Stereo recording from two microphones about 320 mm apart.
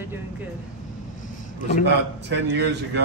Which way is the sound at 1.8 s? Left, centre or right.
Right.